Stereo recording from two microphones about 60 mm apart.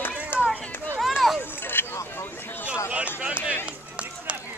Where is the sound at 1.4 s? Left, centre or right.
Left.